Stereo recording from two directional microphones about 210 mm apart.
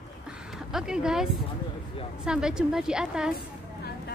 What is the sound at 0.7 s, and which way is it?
A woman's voice, 5° right (ahead or behind).